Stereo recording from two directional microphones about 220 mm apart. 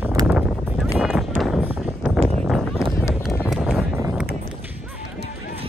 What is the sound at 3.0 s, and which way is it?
Run, 10° left (ahead or behind).